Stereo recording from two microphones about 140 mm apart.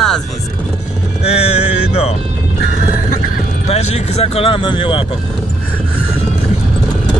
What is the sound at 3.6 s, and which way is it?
Speech, 50° left (ahead or behind).